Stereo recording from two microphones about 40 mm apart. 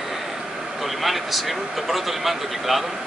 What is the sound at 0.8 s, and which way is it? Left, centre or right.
Speech, centre.